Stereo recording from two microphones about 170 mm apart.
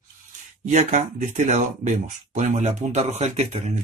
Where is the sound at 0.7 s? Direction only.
45° right (ahead or behind).